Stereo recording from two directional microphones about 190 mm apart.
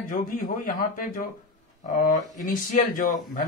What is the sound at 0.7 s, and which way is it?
Speech, 45° left (ahead or behind).